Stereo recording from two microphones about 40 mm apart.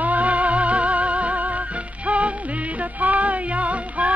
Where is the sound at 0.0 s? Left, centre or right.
Right.